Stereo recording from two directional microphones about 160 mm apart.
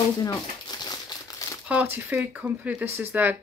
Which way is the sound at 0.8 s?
25° left (ahead or behind).